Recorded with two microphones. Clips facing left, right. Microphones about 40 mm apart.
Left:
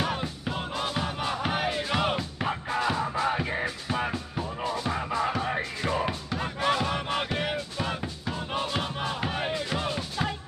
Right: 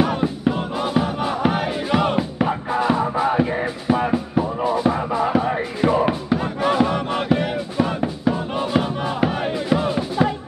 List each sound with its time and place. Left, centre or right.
0.0 s music: centre
7.7 s music: centre